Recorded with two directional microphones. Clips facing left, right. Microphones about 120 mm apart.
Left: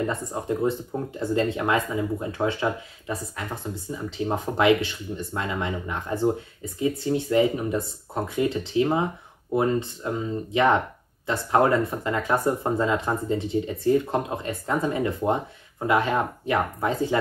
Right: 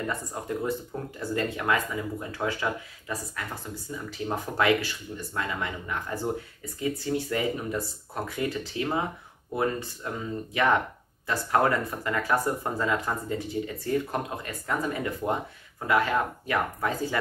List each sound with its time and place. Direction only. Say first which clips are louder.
0.0 s speech: left 5 dB; 25° left (ahead or behind)